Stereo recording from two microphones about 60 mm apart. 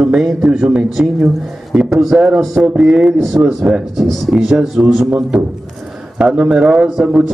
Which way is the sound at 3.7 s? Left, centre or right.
Right.